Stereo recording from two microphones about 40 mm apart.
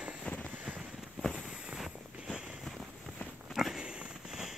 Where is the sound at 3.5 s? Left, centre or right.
Centre.